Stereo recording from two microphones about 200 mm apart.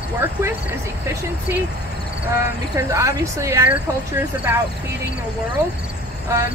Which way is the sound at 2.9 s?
15° right (ahead or behind).